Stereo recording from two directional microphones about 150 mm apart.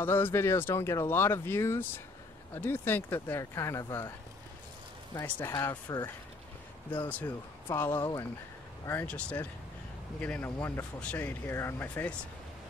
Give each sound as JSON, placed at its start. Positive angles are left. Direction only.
{"t": 0.0, "sound": "speech", "side_deg": 15}
{"t": 5.2, "sound": "speech", "side_deg": 20}